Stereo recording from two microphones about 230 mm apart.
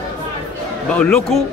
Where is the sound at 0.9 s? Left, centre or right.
Centre.